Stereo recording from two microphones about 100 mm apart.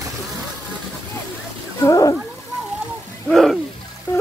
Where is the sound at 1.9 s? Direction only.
35° left (ahead or behind).